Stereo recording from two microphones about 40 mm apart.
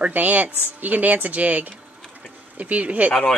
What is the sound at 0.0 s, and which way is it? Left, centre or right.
A woman's voice, right.